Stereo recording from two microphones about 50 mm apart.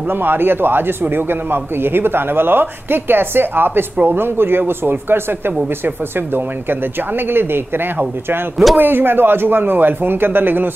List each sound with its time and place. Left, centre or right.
0.1 s speech: right